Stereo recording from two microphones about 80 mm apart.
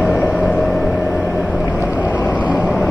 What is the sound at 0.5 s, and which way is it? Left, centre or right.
Vehicle, centre.